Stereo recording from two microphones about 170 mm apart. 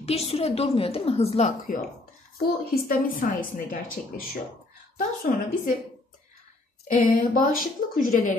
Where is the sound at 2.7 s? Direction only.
55° left (ahead or behind).